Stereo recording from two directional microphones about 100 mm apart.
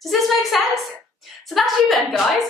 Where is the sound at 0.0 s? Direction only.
Centre (ahead or behind).